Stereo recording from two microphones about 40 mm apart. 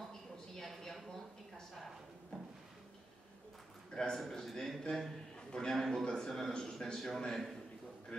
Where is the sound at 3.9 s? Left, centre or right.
Centre.